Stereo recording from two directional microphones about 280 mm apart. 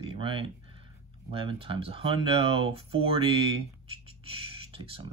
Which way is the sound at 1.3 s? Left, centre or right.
Centre.